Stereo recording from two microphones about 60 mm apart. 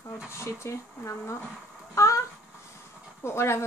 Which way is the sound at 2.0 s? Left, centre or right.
Left.